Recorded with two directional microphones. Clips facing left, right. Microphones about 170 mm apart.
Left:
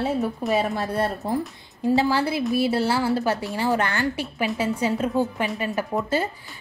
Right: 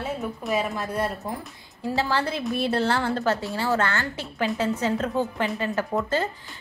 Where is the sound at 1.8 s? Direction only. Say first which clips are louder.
Left 5 dB; 15° left (ahead or behind).